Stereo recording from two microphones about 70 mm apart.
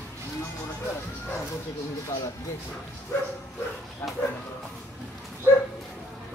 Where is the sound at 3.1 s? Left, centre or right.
Left.